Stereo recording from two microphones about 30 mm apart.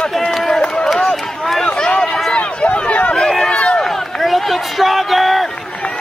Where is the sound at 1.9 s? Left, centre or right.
Left.